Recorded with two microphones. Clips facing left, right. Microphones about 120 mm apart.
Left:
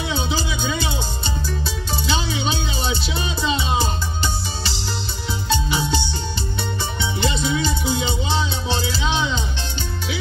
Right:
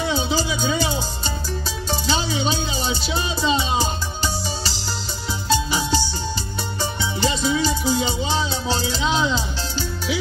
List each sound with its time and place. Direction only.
0.0 s music: 40° right (ahead or behind)